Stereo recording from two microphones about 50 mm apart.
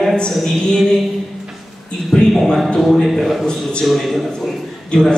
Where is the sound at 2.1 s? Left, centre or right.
Centre.